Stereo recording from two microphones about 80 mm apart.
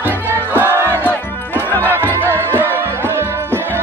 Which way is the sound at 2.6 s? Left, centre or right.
Right.